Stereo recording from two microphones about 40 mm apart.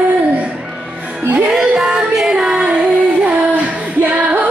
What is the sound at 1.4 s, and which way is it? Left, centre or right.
Music, centre.